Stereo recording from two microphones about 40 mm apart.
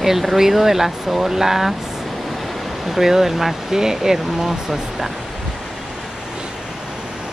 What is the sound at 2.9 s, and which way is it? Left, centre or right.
Speech, centre.